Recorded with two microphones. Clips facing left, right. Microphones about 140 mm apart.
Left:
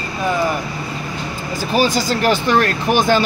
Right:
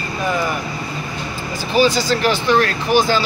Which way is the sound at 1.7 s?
45° left (ahead or behind).